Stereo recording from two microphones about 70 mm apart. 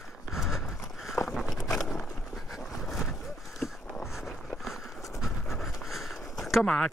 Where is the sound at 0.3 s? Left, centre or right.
Centre.